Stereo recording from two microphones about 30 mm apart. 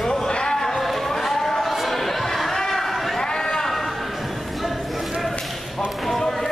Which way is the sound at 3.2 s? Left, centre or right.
Left.